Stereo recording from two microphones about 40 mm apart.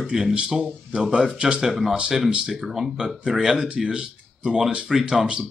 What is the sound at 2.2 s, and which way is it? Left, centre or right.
A man's voice, centre.